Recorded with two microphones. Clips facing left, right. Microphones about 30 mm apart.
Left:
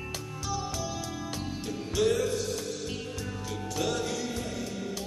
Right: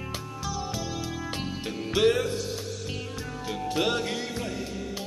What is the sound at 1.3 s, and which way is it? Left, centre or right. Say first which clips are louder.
Music: right 2 dB; right.